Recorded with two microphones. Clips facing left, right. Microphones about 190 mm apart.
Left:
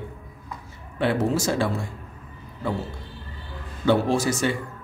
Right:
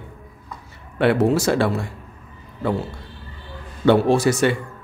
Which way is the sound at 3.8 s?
65° right (ahead or behind).